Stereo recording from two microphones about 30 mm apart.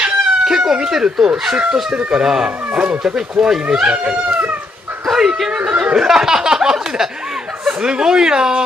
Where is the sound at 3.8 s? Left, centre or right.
Right.